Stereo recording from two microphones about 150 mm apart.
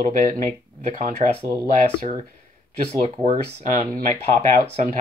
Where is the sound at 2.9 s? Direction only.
45° right (ahead or behind).